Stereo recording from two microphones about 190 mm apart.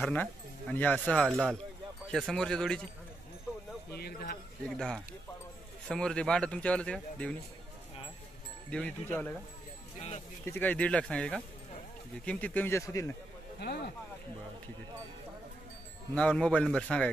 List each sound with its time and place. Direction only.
0.0 s a man's voice: 10° left (ahead or behind)
3.9 s speech: 55° left (ahead or behind)
4.6 s a man's voice: 5° left (ahead or behind)
8.6 s speech: 5° left (ahead or behind)
9.9 s speech: 35° left (ahead or behind)
10.4 s a man's voice: 10° left (ahead or behind)
16.2 s a man's voice: 5° left (ahead or behind)